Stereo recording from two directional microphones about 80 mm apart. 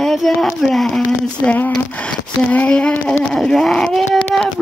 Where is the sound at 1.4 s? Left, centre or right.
Left.